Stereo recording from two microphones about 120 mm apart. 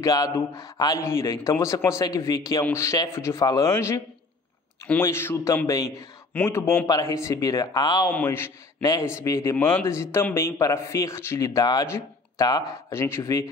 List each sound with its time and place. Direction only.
0.0 s speech: 30° left (ahead or behind)
8.1 s speech: 20° left (ahead or behind)